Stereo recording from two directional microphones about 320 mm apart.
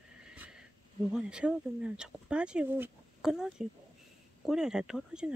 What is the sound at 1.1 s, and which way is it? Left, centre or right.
Speech, centre.